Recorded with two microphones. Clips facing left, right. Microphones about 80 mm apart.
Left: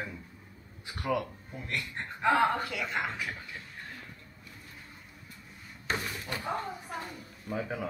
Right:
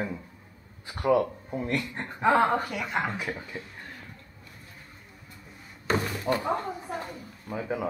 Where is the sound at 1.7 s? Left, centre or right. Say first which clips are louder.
Right 6 dB; right.